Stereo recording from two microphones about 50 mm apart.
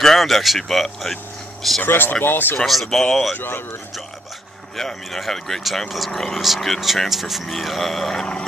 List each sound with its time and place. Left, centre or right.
0.0 s speech: centre
1.9 s speech: left
2.6 s speech: centre
3.3 s speech: left
4.7 s speech: centre